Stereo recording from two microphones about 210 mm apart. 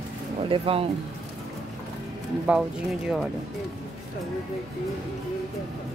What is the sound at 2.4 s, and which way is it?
Speech, 5° right (ahead or behind).